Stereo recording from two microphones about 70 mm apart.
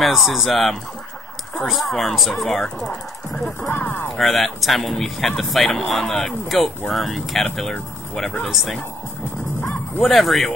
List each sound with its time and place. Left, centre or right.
0.0 s speech: centre
3.7 s speech: left
4.2 s speech: centre
10.0 s speech: centre